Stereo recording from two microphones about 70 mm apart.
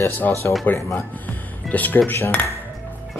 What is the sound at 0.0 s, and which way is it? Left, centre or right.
Speech, left.